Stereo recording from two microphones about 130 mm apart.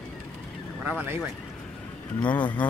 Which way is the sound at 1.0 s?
10° right (ahead or behind).